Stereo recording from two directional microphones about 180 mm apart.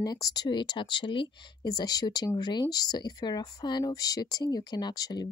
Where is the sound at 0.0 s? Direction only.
20° left (ahead or behind).